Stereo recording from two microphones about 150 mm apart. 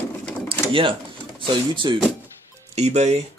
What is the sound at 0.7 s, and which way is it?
Speech, 35° right (ahead or behind).